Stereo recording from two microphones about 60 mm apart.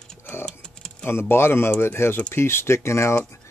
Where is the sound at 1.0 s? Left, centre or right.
Left.